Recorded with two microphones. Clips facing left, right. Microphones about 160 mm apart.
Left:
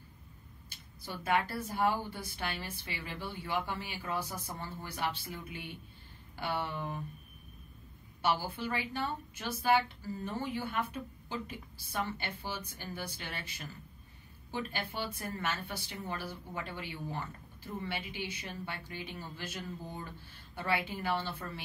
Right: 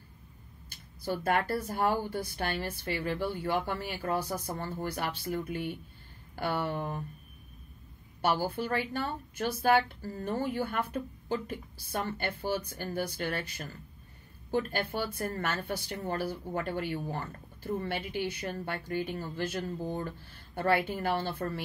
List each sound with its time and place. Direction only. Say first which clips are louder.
1.0 s a woman's voice: right 3 dB; 45° right (ahead or behind)
8.2 s a woman's voice: right 4 dB; 45° right (ahead or behind)